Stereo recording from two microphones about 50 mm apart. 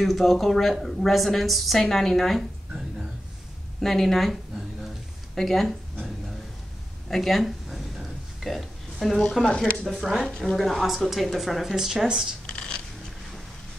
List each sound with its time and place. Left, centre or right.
0.0 s a woman's voice: centre
3.8 s a woman's voice: centre
7.1 s a sound: centre
9.8 s a woman's voice: centre
10.2 s a woman's voice: centre
12.4 s a sound: centre